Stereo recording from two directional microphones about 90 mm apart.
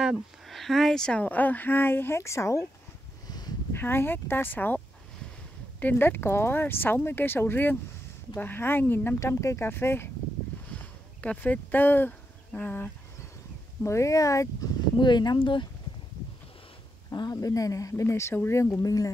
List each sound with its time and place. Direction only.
0.0 s speech: 5° right (ahead or behind); by 2.6 s 30° left (ahead or behind)
3.3 s a sound: 45° left (ahead or behind)
3.7 s speech: 25° left (ahead or behind)
9.2 s speech: 35° left (ahead or behind)
11.1 s speech: 15° left (ahead or behind)
13.8 s speech: 35° left (ahead or behind)
15.0 s speech: 55° left (ahead or behind)
15.3 s speech: 65° left (ahead or behind)
17.1 s speech: 50° left (ahead or behind)